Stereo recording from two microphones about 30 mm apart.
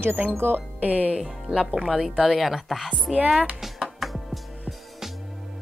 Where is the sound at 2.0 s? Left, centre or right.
Centre.